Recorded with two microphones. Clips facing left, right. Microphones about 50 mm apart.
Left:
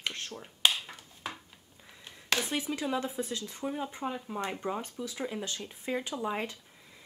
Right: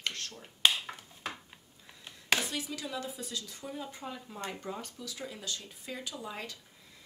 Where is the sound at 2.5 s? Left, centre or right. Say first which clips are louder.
Left 6 dB; left.